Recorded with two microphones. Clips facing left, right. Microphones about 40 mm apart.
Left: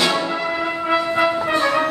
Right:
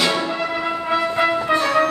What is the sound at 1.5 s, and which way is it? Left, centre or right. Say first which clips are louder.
Music: even; left.